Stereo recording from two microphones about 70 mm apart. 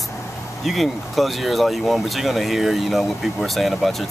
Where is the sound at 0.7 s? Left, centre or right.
Centre.